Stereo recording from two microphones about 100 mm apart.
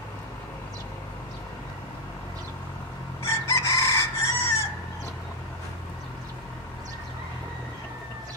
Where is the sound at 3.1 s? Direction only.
25° left (ahead or behind).